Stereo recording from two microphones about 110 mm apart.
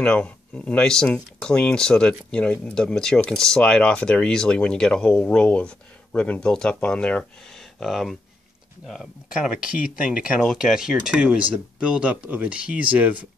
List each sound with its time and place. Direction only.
0.0 s speech: 10° left (ahead or behind); by 13.3 s 10° right (ahead or behind)